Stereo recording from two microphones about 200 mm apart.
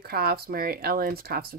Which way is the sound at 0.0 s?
50° right (ahead or behind).